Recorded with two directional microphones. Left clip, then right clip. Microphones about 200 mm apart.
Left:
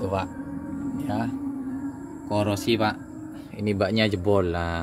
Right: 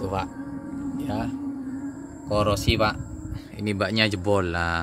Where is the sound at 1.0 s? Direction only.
15° right (ahead or behind).